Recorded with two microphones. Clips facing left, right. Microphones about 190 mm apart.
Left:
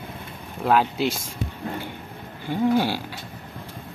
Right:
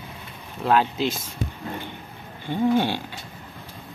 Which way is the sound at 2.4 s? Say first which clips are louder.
Even; 10° left (ahead or behind).